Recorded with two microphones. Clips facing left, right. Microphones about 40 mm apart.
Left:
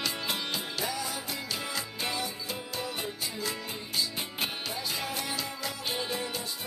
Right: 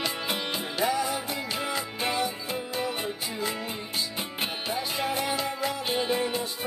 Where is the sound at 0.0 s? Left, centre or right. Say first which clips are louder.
Right 3 dB; right.